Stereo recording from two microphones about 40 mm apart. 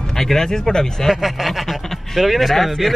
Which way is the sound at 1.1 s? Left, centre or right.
Centre.